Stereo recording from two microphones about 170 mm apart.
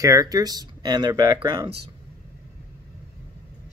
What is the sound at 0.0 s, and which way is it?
Speech, 20° right (ahead or behind).